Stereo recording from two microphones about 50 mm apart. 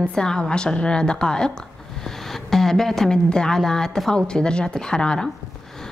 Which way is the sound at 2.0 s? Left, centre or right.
Centre.